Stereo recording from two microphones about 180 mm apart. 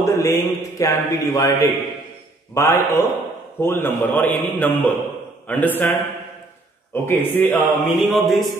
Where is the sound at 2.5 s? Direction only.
15° left (ahead or behind).